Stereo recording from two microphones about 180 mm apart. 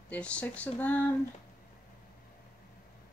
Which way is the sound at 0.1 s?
5° left (ahead or behind).